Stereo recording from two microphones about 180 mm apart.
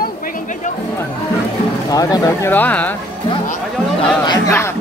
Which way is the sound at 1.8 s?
20° left (ahead or behind).